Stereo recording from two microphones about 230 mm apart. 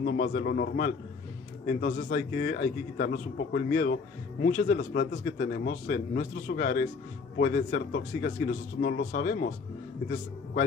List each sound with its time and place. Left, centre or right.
0.0 s a man's voice: left